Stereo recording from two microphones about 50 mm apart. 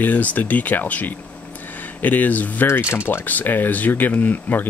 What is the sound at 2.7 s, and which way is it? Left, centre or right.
Speech, left.